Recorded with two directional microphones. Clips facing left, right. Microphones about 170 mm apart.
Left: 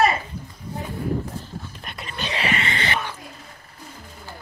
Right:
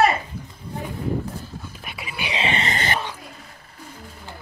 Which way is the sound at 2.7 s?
45° right (ahead or behind).